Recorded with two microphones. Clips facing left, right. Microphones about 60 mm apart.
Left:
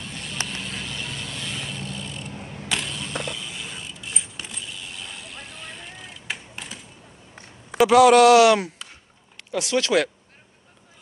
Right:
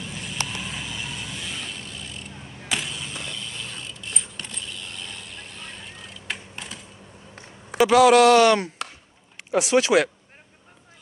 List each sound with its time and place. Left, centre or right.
0.0 s vehicle: centre
2.7 s a sound: centre
3.2 s keys jangling: centre
7.7 s speech: centre
9.5 s speech: centre